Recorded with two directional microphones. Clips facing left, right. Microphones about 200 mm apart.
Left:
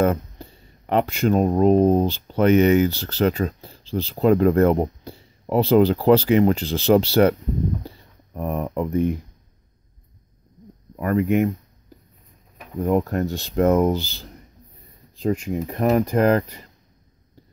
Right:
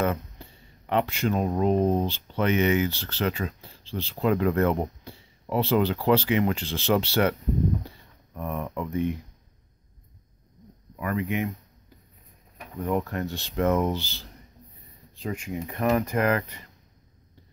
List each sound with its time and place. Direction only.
0.0 s speech: 40° left (ahead or behind)
7.8 s a sound: 35° left (ahead or behind)
11.0 s speech: 45° left (ahead or behind)
12.8 s speech: 40° left (ahead or behind)